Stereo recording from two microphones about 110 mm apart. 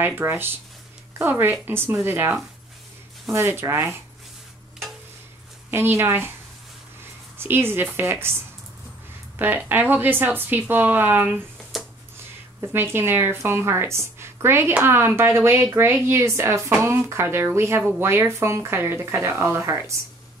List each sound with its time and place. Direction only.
0.0 s a woman's voice: 20° right (ahead or behind)
3.3 s a woman's voice: 20° right (ahead or behind)
5.7 s a woman's voice: 20° right (ahead or behind)
7.3 s a woman's voice: 20° right (ahead or behind)
9.4 s speech: 15° right (ahead or behind)
11.7 s a sound: centre (ahead or behind)
12.5 s a woman's voice: 20° right (ahead or behind)